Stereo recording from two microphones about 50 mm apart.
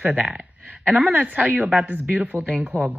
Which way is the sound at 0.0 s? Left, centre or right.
Right.